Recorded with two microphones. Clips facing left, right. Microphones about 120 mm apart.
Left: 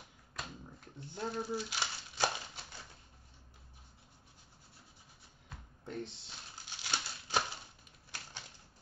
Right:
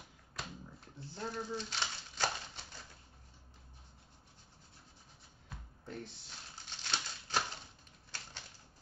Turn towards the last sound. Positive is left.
turn(degrees=10)  # may be behind; listen again after turning